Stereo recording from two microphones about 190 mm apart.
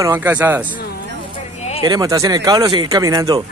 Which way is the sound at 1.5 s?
35° left (ahead or behind).